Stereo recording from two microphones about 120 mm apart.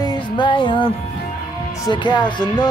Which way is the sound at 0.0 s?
40° left (ahead or behind).